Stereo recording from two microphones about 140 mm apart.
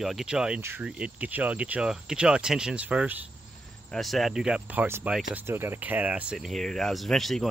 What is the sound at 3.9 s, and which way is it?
Speech, centre (ahead or behind).